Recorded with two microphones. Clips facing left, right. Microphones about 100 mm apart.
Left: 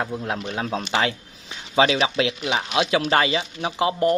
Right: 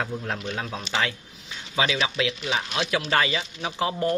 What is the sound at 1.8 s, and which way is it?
Speech, 35° left (ahead or behind).